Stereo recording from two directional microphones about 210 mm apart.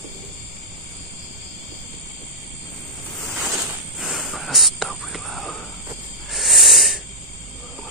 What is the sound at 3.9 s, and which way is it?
Whispering, centre (ahead or behind).